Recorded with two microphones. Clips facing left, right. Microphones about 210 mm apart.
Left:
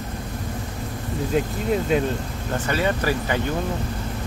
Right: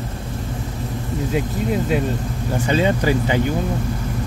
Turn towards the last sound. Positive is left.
turn(degrees=-15)  # may be behind; listen again after turning